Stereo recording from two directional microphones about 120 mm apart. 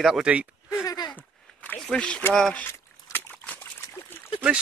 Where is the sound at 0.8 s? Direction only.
35° left (ahead or behind).